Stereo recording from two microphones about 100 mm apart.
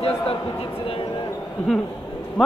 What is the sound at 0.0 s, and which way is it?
Speech, 75° left (ahead or behind).